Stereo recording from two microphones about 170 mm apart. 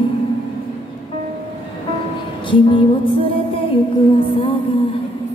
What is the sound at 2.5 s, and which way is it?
Music, 30° left (ahead or behind).